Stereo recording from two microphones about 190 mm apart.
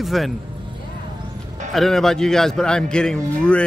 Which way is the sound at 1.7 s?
Centre (ahead or behind).